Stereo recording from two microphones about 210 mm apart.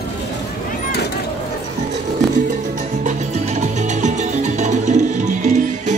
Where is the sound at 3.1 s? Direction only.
35° right (ahead or behind).